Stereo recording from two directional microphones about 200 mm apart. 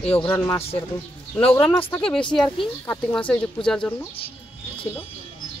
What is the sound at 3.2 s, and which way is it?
Speech, 5° left (ahead or behind).